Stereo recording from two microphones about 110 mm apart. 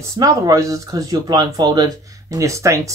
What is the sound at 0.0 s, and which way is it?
Speech, 30° right (ahead or behind).